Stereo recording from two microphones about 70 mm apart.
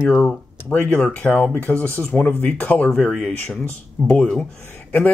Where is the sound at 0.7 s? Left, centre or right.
Left.